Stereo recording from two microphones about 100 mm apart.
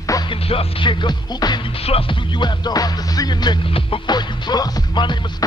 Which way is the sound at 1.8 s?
75° left (ahead or behind).